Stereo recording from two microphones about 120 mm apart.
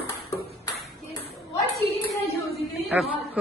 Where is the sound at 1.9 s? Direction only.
55° left (ahead or behind).